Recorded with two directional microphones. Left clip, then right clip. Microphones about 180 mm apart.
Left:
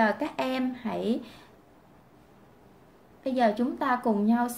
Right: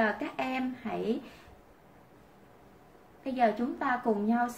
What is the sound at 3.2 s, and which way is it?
A woman's voice, 55° left (ahead or behind).